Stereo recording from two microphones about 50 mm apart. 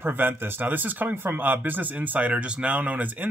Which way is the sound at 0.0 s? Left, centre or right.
Right.